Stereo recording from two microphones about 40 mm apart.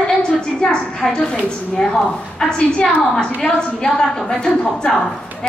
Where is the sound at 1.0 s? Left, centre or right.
Left.